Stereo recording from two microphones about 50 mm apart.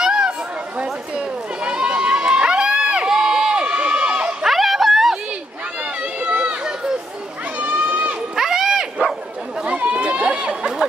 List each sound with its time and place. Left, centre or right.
0.0 s chatter: centre
0.7 s run: right
4.5 s a sound: centre
6.2 s run: right
7.6 s run: right
8.4 s a sound: centre
9.7 s chatter: right